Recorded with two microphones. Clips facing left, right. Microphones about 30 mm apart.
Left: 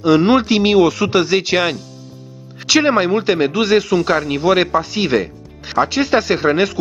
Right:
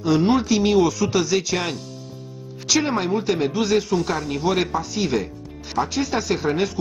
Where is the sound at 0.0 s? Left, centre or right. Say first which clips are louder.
Left 6 dB; left.